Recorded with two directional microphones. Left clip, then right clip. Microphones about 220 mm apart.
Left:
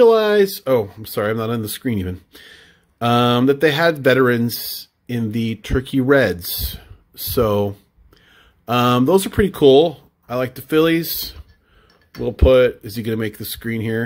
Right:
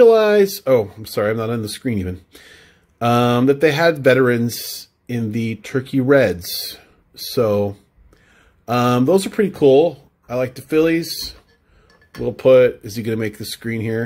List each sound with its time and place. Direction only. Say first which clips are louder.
0.0 s speech: right 1 dB; 5° left (ahead or behind)